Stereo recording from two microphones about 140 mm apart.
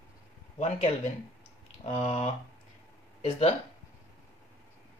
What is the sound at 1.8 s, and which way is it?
Speech, 50° left (ahead or behind).